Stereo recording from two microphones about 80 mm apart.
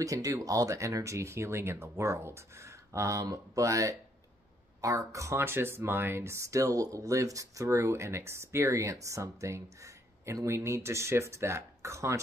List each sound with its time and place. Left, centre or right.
0.0 s speech: right